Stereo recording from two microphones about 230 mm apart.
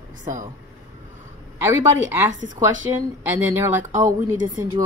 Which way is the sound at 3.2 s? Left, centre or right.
Centre.